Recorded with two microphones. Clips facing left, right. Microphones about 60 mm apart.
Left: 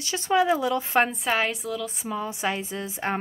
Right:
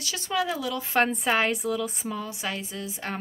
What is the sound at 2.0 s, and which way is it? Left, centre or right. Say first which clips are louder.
Speech: left 4 dB; centre.